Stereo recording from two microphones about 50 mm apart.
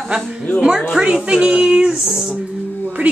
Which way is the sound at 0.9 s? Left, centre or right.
Centre.